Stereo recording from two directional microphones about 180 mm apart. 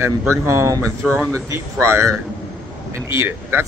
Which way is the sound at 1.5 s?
15° right (ahead or behind).